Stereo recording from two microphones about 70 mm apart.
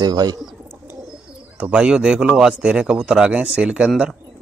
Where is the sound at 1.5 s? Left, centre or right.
Centre.